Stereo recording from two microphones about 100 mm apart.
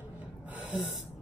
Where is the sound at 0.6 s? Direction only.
10° right (ahead or behind).